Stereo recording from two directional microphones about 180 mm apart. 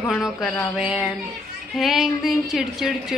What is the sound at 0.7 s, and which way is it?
Music, 5° right (ahead or behind).